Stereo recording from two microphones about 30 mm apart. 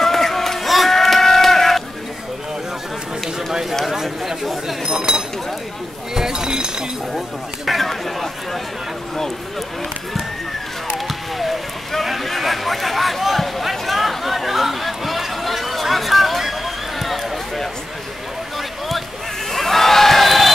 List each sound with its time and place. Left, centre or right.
0.0 s a sound: centre
0.7 s sheep: centre
3.9 s chatter: centre
4.8 s chink: right
7.6 s chatter: centre
11.1 s a sound: centre
19.5 s crowd: centre